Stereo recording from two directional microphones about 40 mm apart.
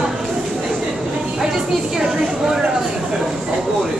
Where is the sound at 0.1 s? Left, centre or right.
Centre.